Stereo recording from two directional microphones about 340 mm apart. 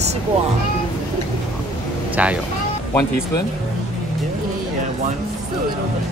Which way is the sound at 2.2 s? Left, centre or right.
Centre.